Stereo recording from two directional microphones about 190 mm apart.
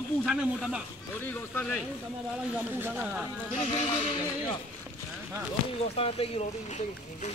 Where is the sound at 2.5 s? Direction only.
10° right (ahead or behind).